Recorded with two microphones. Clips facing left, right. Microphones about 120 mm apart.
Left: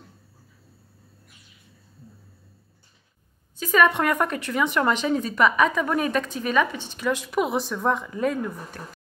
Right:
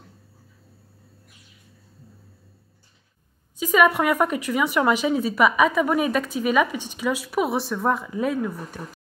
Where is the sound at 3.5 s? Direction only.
10° right (ahead or behind).